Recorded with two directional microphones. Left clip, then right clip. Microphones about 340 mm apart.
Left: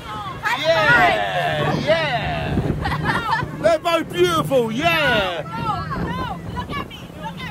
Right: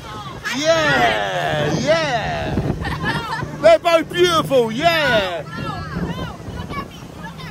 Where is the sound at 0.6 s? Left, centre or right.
Right.